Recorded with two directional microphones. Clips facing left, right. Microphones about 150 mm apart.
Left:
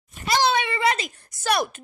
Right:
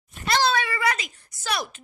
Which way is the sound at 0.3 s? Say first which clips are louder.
Left 1 dB; 20° left (ahead or behind).